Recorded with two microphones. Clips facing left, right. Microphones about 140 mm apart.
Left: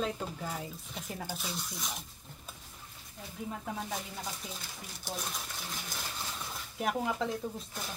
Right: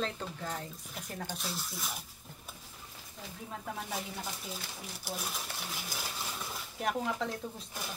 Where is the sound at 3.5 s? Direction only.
Centre (ahead or behind).